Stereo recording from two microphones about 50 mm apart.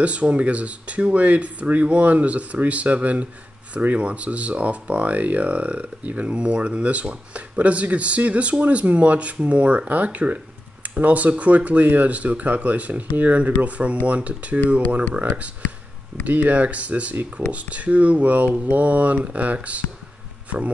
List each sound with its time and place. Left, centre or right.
0.0 s speech: right